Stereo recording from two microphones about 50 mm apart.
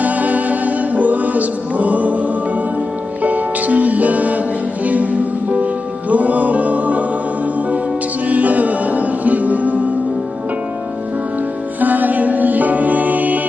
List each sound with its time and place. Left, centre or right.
0.0 s music: right
8.3 s music: right
11.8 s music: right